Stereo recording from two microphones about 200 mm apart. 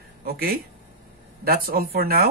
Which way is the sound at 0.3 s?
50° right (ahead or behind).